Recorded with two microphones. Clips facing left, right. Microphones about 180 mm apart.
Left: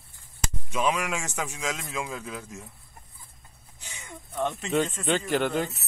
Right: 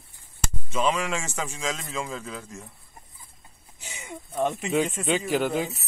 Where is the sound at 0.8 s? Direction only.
5° left (ahead or behind).